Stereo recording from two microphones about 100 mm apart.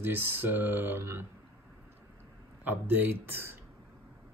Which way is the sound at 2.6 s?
20° right (ahead or behind).